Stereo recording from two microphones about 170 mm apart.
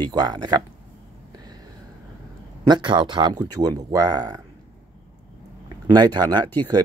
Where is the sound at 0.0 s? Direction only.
25° right (ahead or behind).